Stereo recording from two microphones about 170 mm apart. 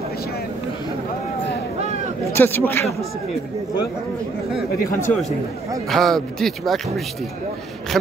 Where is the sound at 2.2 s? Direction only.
15° left (ahead or behind).